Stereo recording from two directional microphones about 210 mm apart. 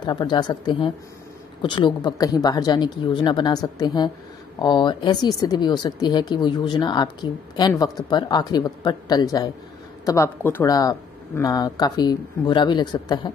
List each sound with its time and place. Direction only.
0.0 s speech: 20° left (ahead or behind)